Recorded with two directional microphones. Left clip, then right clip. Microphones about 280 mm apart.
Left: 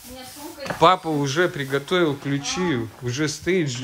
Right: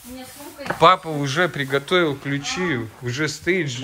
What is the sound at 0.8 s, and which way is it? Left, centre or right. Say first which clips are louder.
Speech: right 2 dB; centre.